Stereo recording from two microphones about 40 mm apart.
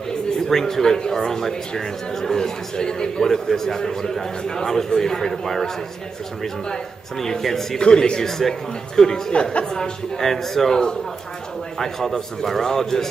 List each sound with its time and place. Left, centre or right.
0.5 s a man's voice: centre
7.8 s a man's voice: left
9.3 s a woman's voice: left
9.8 s a man's voice: centre
11.8 s a man's voice: centre